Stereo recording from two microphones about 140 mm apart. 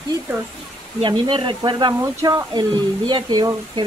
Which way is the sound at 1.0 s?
35° right (ahead or behind).